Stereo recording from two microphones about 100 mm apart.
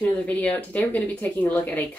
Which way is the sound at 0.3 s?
15° left (ahead or behind).